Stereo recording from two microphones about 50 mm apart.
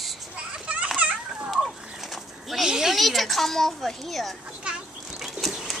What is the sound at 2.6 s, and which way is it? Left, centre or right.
Speech, centre.